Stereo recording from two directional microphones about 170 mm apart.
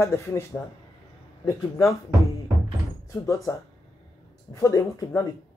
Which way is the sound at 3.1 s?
20° left (ahead or behind).